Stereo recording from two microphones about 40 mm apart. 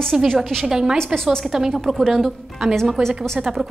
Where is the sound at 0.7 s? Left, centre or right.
Centre.